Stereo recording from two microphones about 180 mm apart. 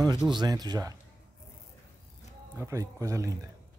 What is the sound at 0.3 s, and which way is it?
Speech, 20° right (ahead or behind).